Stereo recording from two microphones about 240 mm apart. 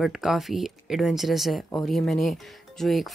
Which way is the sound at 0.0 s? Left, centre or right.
Centre.